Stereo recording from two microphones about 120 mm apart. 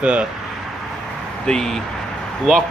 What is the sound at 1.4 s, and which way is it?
Speech, 5° left (ahead or behind).